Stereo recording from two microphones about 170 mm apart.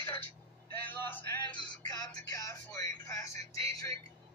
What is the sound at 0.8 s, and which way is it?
Vehicle, 10° left (ahead or behind).